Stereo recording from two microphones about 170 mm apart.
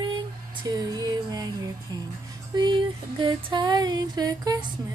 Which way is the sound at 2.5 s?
25° right (ahead or behind).